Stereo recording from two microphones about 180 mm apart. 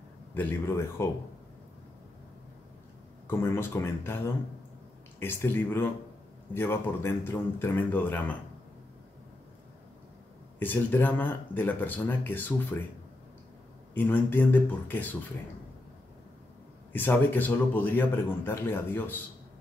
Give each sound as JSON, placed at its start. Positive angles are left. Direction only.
{"t": 0.3, "sound": "a man's voice", "side_deg": 10}
{"t": 3.3, "sound": "a man's voice", "side_deg": 15}
{"t": 5.2, "sound": "a man's voice", "side_deg": 10}
{"t": 10.6, "sound": "a man's voice", "side_deg": 10}
{"t": 13.9, "sound": "a man's voice", "side_deg": 10}
{"t": 16.9, "sound": "a man's voice", "side_deg": 10}